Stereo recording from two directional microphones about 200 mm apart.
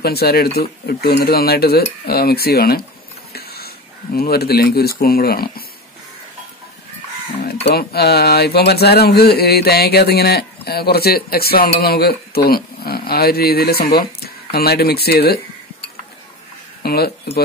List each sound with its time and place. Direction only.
0.0 s speech: 50° left (ahead or behind)
7.4 s speech: 50° left (ahead or behind)
16.8 s speech: 50° left (ahead or behind)